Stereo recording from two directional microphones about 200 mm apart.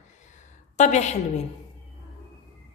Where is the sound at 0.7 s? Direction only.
35° left (ahead or behind).